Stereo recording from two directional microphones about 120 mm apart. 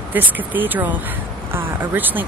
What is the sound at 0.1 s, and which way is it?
Speech, 15° right (ahead or behind).